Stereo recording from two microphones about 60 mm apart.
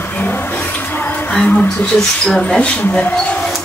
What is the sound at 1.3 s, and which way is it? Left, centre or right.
Speech, centre.